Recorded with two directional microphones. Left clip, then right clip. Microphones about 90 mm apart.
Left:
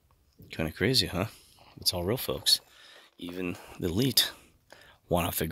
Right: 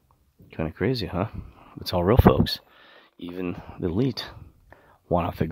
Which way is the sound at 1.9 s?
80° right.